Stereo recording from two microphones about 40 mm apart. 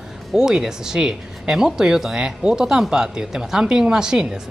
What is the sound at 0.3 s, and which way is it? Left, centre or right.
Speech, centre.